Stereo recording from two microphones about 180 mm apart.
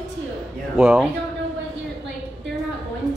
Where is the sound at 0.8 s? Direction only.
5° right (ahead or behind).